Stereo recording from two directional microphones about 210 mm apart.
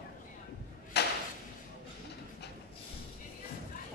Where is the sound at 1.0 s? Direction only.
50° left (ahead or behind).